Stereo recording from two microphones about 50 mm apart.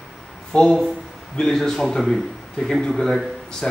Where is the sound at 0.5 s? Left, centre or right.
Left.